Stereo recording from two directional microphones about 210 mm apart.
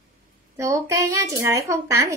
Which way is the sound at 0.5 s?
15° right (ahead or behind).